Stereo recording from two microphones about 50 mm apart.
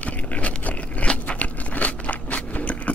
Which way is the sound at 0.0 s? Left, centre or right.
Left.